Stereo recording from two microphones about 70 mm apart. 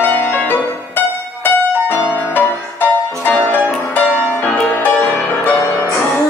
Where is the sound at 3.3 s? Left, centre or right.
Left.